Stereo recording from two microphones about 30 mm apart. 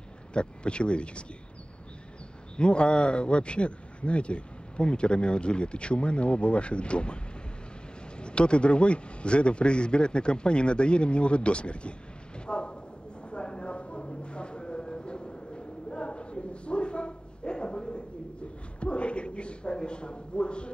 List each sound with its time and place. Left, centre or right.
0.3 s speech: left
2.5 s speech: left
8.2 s speech: left
12.4 s a sound: left
13.3 s train: left
18.8 s a sound: left